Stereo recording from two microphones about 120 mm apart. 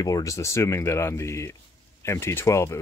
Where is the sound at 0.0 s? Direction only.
30° left (ahead or behind).